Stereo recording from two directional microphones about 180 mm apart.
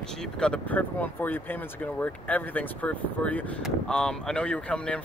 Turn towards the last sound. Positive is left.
turn(degrees=5)  # may be behind; listen again after turning